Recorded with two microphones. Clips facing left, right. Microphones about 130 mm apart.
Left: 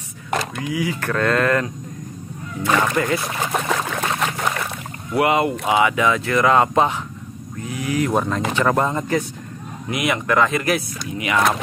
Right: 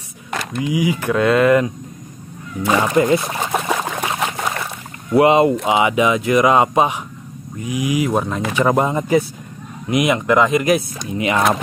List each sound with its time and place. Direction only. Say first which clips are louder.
0.6 s speech: right 5 dB; 15° right (ahead or behind)
3.6 s trickle: right 1 dB; 15° right (ahead or behind)
5.1 s speech: right 6 dB; 25° right (ahead or behind)
8.1 s speech: right 1 dB; centre (ahead or behind)
8.5 s speech: right 4 dB; 15° right (ahead or behind)